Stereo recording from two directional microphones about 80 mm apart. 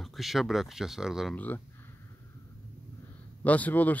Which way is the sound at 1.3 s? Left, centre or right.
Left.